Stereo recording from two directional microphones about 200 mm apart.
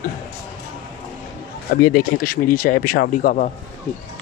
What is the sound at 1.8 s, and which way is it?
Speech, 45° left (ahead or behind).